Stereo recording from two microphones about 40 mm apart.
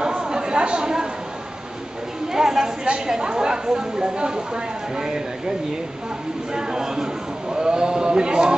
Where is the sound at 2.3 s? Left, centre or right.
Centre.